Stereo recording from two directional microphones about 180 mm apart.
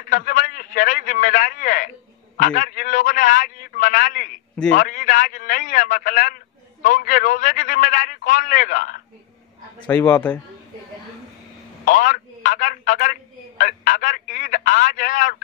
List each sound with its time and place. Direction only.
0.1 s a man's voice: 45° left (ahead or behind)
9.8 s a man's voice: 15° left (ahead or behind)
11.8 s a man's voice: 45° left (ahead or behind)